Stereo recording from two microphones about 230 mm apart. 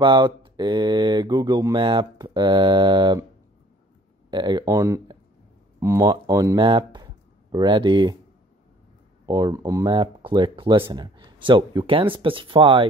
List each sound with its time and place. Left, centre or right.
0.0 s speech: right
4.3 s speech: centre
9.2 s speech: centre